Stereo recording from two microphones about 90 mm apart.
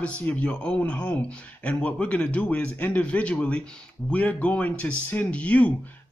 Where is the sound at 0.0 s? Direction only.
15° left (ahead or behind).